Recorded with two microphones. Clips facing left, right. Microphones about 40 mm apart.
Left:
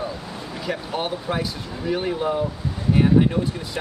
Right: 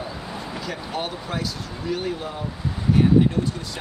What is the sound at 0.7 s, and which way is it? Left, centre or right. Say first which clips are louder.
Speech: left 5 dB; centre.